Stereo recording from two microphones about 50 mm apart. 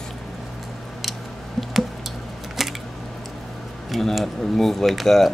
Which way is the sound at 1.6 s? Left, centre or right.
Centre.